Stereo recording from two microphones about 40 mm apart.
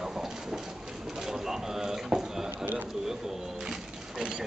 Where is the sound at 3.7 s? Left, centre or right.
Right.